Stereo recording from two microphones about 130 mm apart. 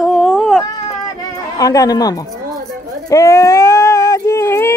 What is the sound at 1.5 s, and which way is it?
Speech, 25° left (ahead or behind).